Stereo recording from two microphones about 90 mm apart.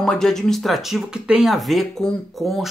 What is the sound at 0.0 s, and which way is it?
Speech, 5° left (ahead or behind).